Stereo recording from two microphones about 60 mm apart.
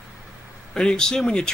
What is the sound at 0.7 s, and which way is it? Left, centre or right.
Speech, centre.